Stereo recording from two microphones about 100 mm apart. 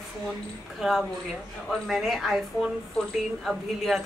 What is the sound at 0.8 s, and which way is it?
Speech, centre (ahead or behind).